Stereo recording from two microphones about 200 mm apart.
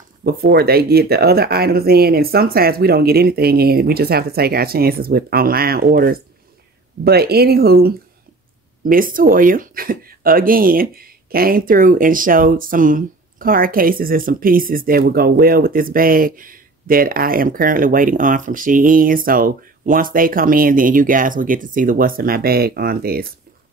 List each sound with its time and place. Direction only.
0.2 s speech: 50° right (ahead or behind)